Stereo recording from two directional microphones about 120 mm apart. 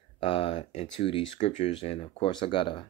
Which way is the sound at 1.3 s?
75° left (ahead or behind).